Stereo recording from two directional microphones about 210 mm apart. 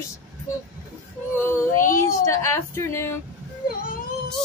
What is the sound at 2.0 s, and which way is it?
A woman's voice, 15° left (ahead or behind).